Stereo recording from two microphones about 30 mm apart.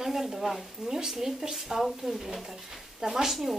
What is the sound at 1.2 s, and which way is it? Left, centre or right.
Speech, centre.